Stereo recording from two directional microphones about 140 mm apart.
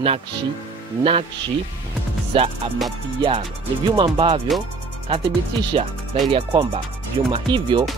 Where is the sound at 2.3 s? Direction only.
40° right (ahead or behind).